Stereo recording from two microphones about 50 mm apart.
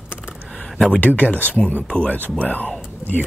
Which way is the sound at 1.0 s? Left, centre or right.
Left.